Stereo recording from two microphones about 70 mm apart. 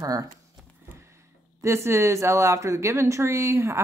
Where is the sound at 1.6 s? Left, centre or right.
Right.